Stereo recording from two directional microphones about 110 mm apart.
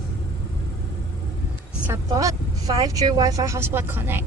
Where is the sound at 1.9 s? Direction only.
30° right (ahead or behind).